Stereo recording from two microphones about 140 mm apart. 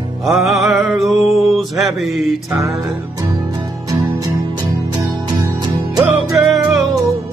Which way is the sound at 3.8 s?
25° right (ahead or behind).